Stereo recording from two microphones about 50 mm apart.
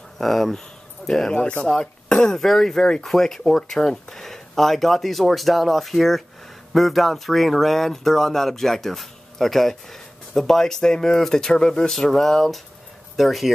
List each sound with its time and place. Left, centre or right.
0.2 s speech: centre
1.3 s speech: left
2.3 s speech: centre